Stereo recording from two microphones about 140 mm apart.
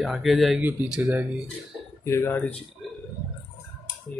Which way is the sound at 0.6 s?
10° right (ahead or behind).